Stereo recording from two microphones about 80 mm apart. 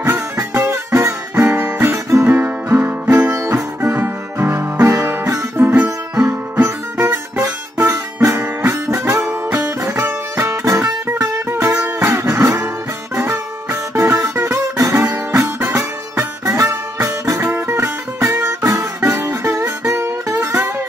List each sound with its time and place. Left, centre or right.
0.6 s music: right
6.5 s music: right
8.2 s music: right
9.3 s music: centre
9.8 s music: right
12.0 s guitar: right
13.1 s music: right
16.4 s music: right